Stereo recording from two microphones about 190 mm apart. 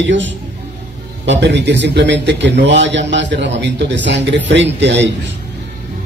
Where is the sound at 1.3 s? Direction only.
65° right (ahead or behind).